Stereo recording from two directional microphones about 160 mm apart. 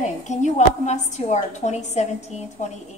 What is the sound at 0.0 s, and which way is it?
A woman's voice, 50° left (ahead or behind).